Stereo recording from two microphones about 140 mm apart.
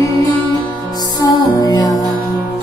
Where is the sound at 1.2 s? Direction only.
30° left (ahead or behind).